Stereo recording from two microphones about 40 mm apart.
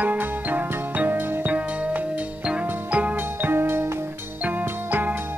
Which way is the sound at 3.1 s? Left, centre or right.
Right.